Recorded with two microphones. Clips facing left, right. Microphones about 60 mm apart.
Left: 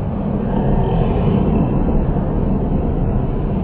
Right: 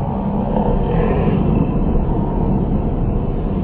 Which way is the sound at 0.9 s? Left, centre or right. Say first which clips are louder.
Right 1 dB; right.